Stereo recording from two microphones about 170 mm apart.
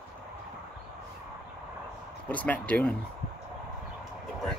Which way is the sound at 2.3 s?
10° left (ahead or behind).